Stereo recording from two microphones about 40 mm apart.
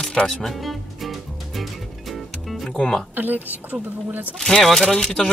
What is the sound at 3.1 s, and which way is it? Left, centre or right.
Speech, right.